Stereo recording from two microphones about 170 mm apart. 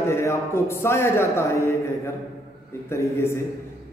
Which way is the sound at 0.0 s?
15° left (ahead or behind).